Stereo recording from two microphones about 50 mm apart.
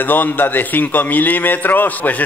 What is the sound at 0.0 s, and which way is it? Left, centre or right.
A man's voice, left.